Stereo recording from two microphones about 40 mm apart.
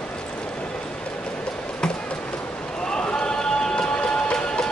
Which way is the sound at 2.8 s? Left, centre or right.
Centre.